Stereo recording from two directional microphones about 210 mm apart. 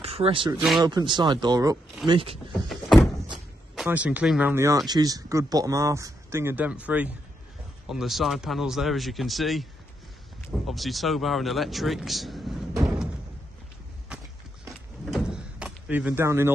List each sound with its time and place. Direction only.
0.0 s speech: 25° right (ahead or behind)
0.6 s speech: centre (ahead or behind)
0.8 s speech: 20° right (ahead or behind)
3.7 s speech: 5° right (ahead or behind)
10.7 s speech: centre (ahead or behind)
14.0 s door: 5° right (ahead or behind)